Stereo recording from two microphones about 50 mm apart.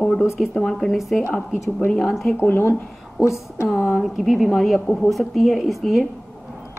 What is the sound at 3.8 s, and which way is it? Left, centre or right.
A woman's voice, centre.